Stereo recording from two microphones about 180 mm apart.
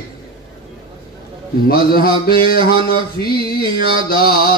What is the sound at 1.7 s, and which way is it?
Mantra, 55° left (ahead or behind).